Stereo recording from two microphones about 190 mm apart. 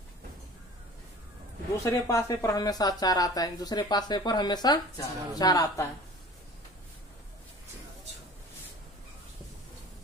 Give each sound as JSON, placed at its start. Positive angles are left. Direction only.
{"t": 1.9, "sound": "speech", "side_deg": 15}